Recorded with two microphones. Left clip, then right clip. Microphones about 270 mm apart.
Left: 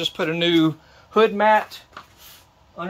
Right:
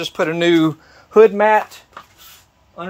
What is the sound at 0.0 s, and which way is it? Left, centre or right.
Speech, centre.